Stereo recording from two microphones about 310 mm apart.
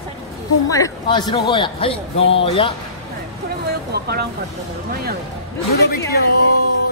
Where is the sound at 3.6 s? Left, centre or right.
Right.